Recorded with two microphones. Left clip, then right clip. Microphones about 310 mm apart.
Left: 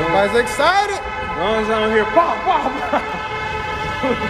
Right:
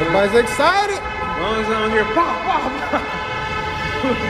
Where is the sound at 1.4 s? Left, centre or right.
Left.